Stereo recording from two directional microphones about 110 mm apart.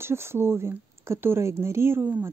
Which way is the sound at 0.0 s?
25° right (ahead or behind).